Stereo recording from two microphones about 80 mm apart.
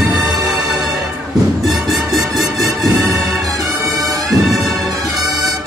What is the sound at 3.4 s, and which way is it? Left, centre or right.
Music, right.